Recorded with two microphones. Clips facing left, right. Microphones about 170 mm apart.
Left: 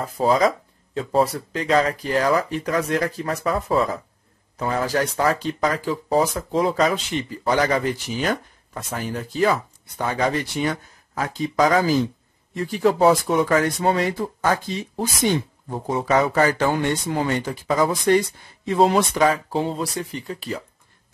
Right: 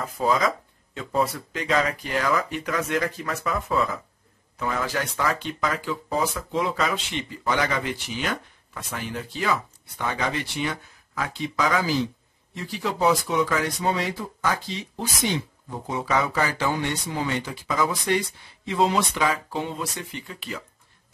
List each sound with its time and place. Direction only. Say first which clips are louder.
0.0 s speech: left 5 dB; 35° left (ahead or behind)